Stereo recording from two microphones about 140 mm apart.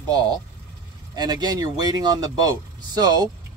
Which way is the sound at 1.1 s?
30° right (ahead or behind).